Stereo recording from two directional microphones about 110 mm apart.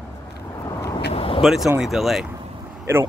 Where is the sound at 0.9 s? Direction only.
55° left (ahead or behind).